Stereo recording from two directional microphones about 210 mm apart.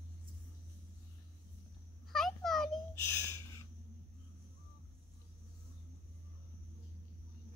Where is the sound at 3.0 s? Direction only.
10° left (ahead or behind).